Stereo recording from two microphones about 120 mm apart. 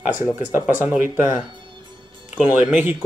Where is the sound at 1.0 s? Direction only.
15° right (ahead or behind).